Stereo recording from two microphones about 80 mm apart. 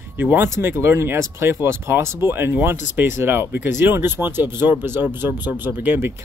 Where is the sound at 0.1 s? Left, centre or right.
Right.